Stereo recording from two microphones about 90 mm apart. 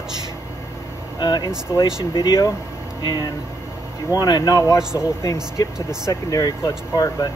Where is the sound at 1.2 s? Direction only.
50° left (ahead or behind).